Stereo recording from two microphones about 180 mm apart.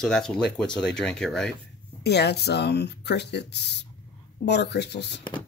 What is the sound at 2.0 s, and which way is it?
Speech, 65° left (ahead or behind).